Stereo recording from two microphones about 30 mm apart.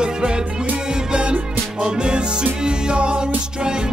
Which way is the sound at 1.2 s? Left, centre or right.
Right.